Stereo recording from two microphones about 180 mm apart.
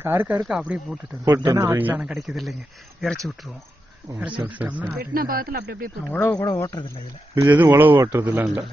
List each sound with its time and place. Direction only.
0.0 s a man's voice: 10° right (ahead or behind)
1.2 s a man's voice: 15° right (ahead or behind); by 2.5 s centre (ahead or behind)
4.4 s a man's voice: 10° right (ahead or behind)
4.9 s speech: 55° right (ahead or behind)
6.0 s speech: 10° left (ahead or behind)
7.3 s a man's voice: 15° right (ahead or behind)